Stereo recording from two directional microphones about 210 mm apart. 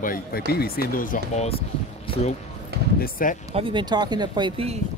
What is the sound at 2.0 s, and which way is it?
Basketball bounce, 25° left (ahead or behind).